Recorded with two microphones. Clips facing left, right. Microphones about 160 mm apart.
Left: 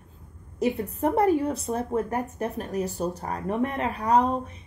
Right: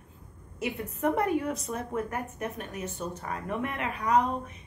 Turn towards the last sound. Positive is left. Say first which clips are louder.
# left 4 dB
turn(degrees=35)  # may be behind; listen again after turning